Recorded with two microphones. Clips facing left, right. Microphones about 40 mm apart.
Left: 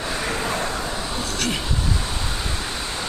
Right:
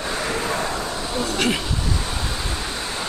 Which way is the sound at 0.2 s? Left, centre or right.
Centre.